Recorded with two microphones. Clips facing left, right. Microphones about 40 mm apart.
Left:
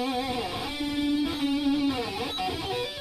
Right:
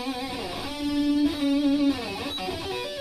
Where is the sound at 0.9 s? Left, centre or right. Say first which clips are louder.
Right 4 dB; left.